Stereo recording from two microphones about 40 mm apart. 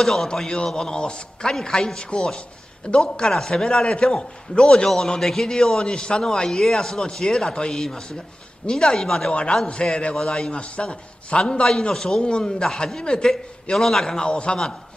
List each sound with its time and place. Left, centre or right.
0.0 s a man's voice: centre
0.7 s a man's voice: centre
9.3 s a man's voice: left
10.1 s a man's voice: centre
10.5 s a man's voice: left
11.9 s a man's voice: centre
12.2 s a man's voice: left
13.7 s a man's voice: centre; by 14.6 s left